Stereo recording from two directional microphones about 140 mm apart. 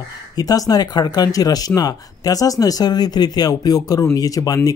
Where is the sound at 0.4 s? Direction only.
25° left (ahead or behind).